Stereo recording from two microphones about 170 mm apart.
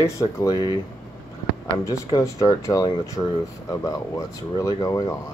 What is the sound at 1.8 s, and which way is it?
Speech, 20° left (ahead or behind).